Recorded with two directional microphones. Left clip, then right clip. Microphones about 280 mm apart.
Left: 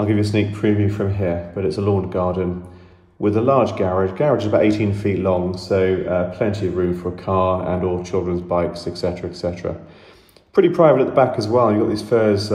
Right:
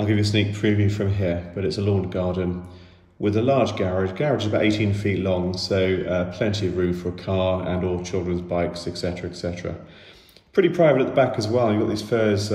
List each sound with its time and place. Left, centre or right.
0.0 s speech: centre
10.8 s speech: centre